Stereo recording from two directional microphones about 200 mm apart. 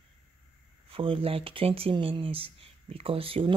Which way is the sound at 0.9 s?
25° right (ahead or behind).